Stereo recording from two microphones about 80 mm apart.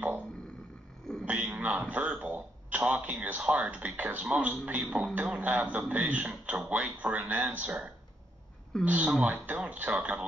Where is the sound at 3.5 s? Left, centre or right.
Centre.